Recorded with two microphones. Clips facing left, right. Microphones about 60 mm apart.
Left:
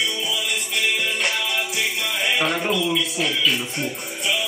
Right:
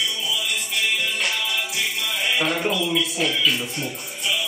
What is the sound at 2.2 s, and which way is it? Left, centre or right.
Music, centre.